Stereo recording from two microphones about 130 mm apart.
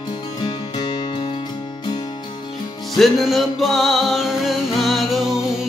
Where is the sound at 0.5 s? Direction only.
35° left (ahead or behind).